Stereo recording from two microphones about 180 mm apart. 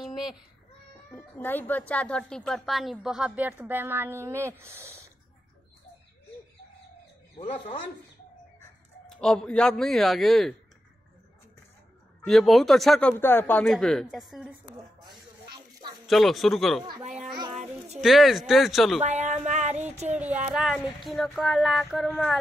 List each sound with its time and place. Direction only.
0.0 s child singing: centre (ahead or behind)
1.1 s a woman's voice: 10° left (ahead or behind); by 5.1 s 15° right (ahead or behind)
9.0 s a woman's voice: 5° left (ahead or behind)
12.3 s a woman's voice: centre (ahead or behind)
13.2 s a woman's voice: 10° left (ahead or behind)
15.5 s a sound: 25° right (ahead or behind)
16.1 s a woman's voice: centre (ahead or behind)
18.0 s a woman's voice: centre (ahead or behind)
18.9 s speech: 40° right (ahead or behind)
20.2 s a woman's voice: 10° right (ahead or behind)